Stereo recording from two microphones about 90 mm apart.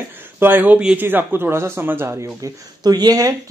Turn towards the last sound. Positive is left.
turn(degrees=-45)  # may be behind; listen again after turning